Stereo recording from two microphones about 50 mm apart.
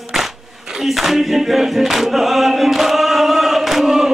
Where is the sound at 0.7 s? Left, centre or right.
Centre.